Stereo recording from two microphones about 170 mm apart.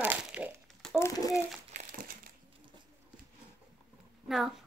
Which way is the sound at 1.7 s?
55° right (ahead or behind).